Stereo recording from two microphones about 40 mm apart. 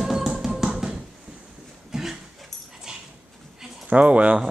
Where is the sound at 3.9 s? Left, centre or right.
Right.